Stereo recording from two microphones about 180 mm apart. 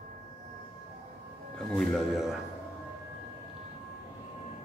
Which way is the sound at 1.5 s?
5° left (ahead or behind).